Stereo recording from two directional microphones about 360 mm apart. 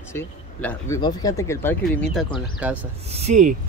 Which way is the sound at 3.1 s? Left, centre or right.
Centre.